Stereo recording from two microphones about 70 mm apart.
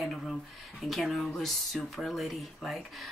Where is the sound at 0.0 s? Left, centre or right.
Centre.